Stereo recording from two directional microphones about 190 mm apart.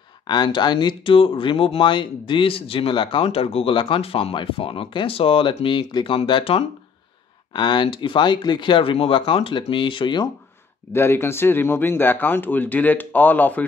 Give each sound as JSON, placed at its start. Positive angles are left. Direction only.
{"t": 0.3, "sound": "speech", "side_deg": 25}
{"t": 10.9, "sound": "speech", "side_deg": 15}